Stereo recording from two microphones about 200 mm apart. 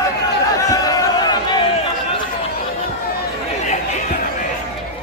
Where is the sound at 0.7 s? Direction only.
20° left (ahead or behind).